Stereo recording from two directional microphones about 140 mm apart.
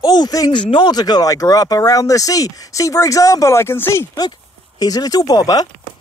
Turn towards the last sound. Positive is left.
turn(degrees=25)  # may be behind; listen again after turning